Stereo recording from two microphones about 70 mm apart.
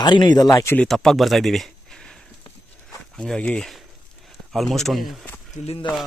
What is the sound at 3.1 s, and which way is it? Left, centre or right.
Speech, centre.